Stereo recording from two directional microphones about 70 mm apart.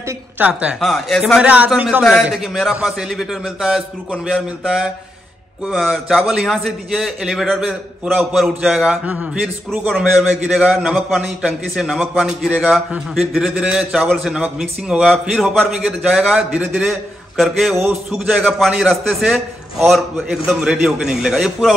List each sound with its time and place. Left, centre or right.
0.4 s a man's voice: centre
0.7 s a man's voice: centre
1.4 s a man's voice: right
2.3 s a man's voice: centre
9.0 s a man's voice: right
10.7 s a man's voice: centre
12.4 s speech: centre
13.1 s a man's voice: centre